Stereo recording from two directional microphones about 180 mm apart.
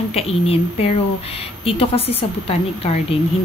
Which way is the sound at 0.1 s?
35° left (ahead or behind).